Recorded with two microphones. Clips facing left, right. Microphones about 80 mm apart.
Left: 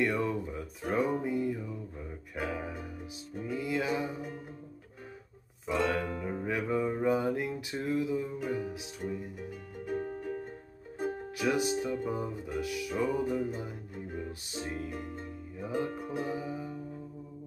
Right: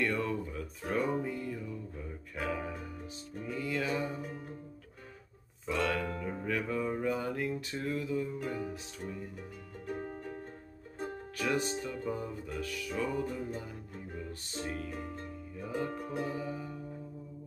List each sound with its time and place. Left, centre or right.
0.0 s a sound: centre
0.9 s music: centre
5.7 s music: centre
11.0 s music: centre